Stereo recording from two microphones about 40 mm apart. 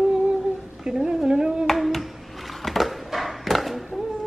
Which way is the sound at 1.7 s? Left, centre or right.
Centre.